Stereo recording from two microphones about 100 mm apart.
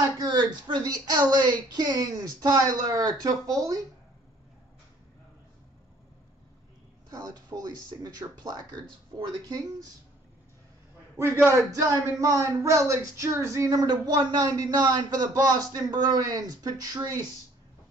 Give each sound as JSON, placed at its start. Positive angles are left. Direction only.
{"t": 0.2, "sound": "speech", "side_deg": -45}
{"t": 7.1, "sound": "speech", "side_deg": -40}
{"t": 11.1, "sound": "a man's voice", "side_deg": -25}
{"t": 11.7, "sound": "speech", "side_deg": -35}